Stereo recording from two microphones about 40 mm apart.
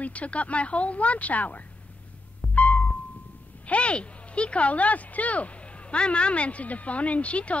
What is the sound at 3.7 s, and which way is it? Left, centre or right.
Speech, left.